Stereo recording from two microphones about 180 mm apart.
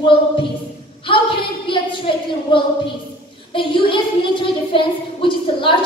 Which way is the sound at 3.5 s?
30° left (ahead or behind).